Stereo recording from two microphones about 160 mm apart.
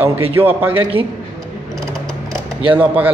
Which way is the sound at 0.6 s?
35° right (ahead or behind).